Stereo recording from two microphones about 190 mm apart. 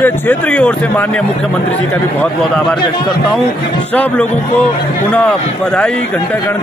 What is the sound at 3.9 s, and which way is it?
A man's voice, 5° left (ahead or behind).